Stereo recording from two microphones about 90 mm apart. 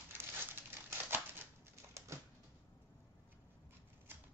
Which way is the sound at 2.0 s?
35° right (ahead or behind).